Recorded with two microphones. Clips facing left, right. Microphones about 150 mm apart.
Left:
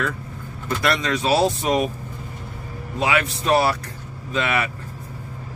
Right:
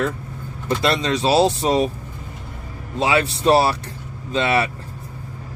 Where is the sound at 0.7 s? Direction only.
25° right (ahead or behind).